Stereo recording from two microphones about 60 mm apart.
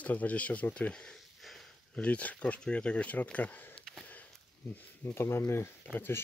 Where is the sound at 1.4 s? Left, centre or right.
Centre.